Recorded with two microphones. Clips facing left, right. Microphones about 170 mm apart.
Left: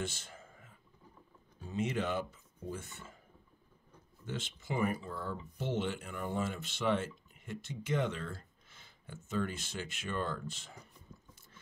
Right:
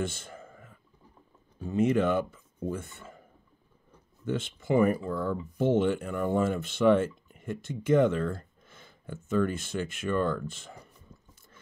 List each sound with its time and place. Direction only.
0.0 s a sound: 55° right (ahead or behind)
1.6 s speech: 55° right (ahead or behind)
4.3 s speech: 55° right (ahead or behind)